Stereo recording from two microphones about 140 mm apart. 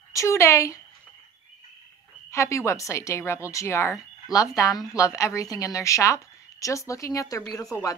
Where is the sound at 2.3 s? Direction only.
20° left (ahead or behind).